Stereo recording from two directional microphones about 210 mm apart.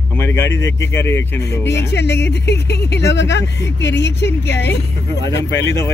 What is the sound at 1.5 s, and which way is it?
Speech, 55° left (ahead or behind).